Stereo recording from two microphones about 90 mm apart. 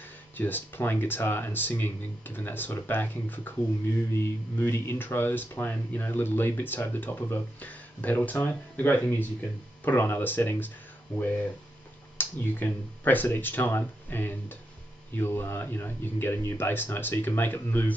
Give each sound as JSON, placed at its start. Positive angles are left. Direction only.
{"t": 0.4, "sound": "speech", "side_deg": 20}
{"t": 9.0, "sound": "speech", "side_deg": 30}
{"t": 12.2, "sound": "speech", "side_deg": 20}